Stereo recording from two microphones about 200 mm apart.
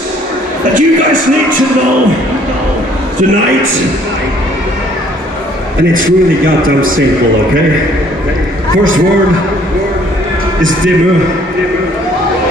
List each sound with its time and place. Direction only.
0.7 s speech: 40° right (ahead or behind)
5.9 s a man's voice: 45° right (ahead or behind)